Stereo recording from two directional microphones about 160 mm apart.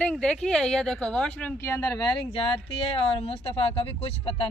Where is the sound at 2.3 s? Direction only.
35° left (ahead or behind).